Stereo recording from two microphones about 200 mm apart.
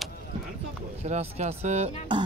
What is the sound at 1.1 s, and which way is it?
Speech, 35° right (ahead or behind).